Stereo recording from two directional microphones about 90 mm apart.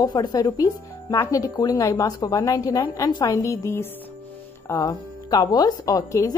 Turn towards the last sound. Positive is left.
turn(degrees=40)  # may be behind; listen again after turning